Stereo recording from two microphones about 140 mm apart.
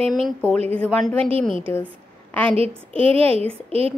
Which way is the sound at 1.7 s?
10° left (ahead or behind).